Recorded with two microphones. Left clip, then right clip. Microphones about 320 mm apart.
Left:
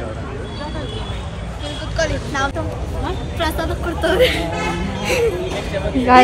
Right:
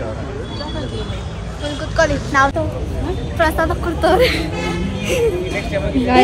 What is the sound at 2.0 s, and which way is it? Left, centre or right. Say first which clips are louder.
Speech: right 6 dB; right.